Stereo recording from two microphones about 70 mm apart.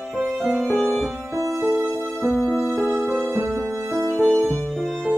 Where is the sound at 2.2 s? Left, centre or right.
Centre.